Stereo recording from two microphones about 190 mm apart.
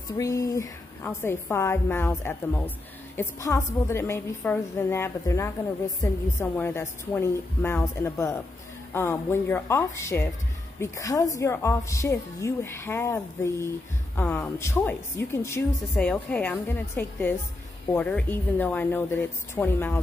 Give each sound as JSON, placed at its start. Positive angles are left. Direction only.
{"t": 0.2, "sound": "a woman's voice", "side_deg": 15}